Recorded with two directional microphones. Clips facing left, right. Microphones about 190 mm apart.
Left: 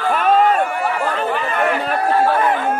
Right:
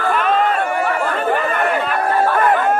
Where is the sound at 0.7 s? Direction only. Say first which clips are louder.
Right 1 dB; 50° right (ahead or behind).